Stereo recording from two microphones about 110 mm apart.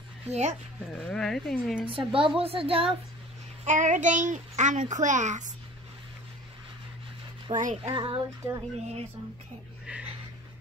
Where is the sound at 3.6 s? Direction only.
90° right.